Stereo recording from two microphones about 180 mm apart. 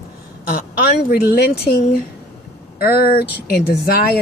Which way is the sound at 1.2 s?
65° left (ahead or behind).